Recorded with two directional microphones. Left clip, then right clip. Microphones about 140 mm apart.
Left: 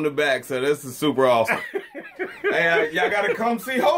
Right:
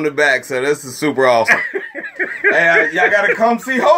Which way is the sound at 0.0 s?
20° left (ahead or behind).